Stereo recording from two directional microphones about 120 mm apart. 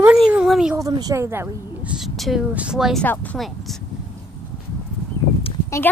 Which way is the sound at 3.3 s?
Centre (ahead or behind).